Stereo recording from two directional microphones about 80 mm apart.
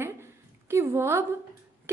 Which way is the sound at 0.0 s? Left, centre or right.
Right.